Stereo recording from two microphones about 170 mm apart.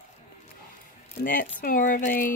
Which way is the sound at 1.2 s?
55° left (ahead or behind).